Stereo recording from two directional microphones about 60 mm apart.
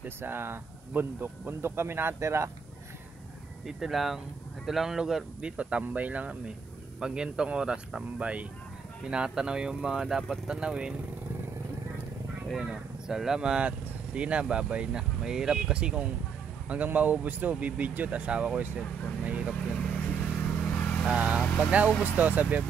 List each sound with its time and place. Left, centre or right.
0.0 s speech: right
3.6 s speech: centre
5.6 s speech: right
7.0 s speech: centre
12.5 s speech: centre
19.2 s vehicle: right
19.8 s vehicle: left
21.5 s speech: centre